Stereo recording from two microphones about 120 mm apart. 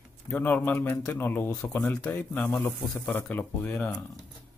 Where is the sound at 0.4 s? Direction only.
15° left (ahead or behind).